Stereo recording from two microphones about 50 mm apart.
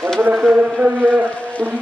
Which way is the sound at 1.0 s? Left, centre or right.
Right.